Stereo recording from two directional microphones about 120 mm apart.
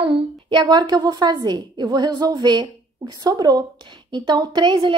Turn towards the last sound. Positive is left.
turn(degrees=-40)  # may be behind; listen again after turning